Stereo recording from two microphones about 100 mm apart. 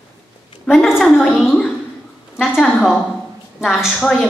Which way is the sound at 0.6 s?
Centre (ahead or behind).